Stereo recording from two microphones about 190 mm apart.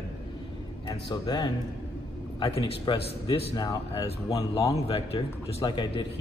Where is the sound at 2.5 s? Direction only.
30° left (ahead or behind).